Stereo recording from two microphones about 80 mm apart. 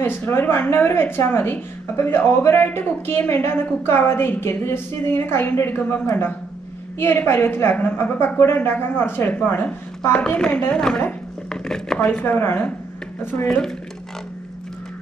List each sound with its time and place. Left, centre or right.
0.0 s a woman's voice: left
11.4 s a sound: centre
12.2 s a woman's voice: left